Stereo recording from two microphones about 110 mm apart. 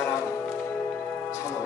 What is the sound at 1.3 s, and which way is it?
Music, 25° left (ahead or behind).